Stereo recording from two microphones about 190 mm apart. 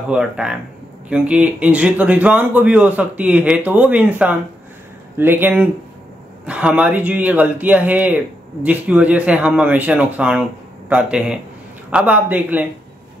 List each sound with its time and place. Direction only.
0.1 s speech: 5° right (ahead or behind)